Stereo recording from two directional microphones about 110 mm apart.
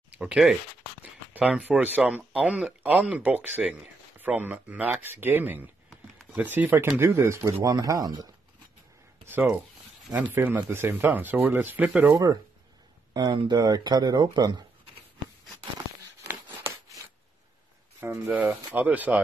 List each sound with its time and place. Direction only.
0.1 s speech: 10° right (ahead or behind); by 8.1 s 30° right (ahead or behind)
9.3 s speech: 20° right (ahead or behind)
13.1 s speech: 45° right (ahead or behind)
16.3 s a sound: 20° right (ahead or behind)
18.0 s speech: 20° right (ahead or behind)